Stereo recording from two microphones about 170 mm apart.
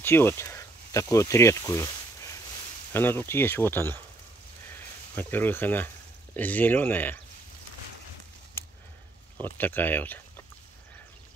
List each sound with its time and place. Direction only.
0.0 s speech: 15° left (ahead or behind)
4.6 s a sound: 10° left (ahead or behind)
6.3 s speech: 10° left (ahead or behind)
9.4 s speech: 10° left (ahead or behind)